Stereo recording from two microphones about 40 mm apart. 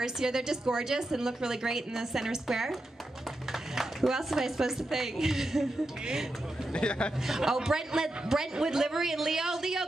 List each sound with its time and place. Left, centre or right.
0.0 s a woman's voice: centre
6.7 s speech: left
7.2 s a woman's voice: centre